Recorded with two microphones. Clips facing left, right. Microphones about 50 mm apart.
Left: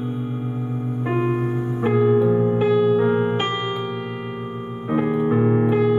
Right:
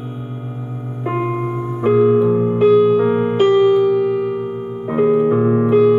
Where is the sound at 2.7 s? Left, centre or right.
Right.